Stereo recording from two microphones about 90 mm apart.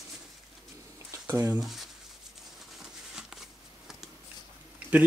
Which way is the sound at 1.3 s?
20° right (ahead or behind).